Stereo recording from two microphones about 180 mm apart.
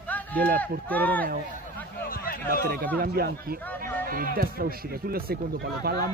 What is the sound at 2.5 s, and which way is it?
A man's voice, 55° right (ahead or behind).